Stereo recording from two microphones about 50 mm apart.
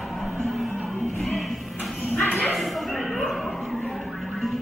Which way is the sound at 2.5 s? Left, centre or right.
Centre.